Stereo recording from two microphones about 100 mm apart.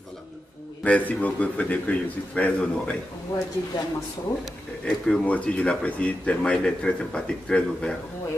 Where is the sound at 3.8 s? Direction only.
40° left (ahead or behind).